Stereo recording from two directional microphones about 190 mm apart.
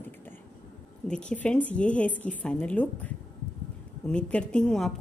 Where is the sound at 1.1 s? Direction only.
5° left (ahead or behind).